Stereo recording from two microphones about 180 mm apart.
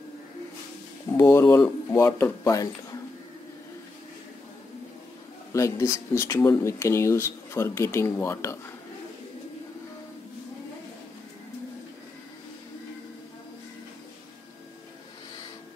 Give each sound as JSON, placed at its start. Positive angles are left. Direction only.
{"t": 1.1, "sound": "speech", "side_deg": 15}
{"t": 5.5, "sound": "speech", "side_deg": 15}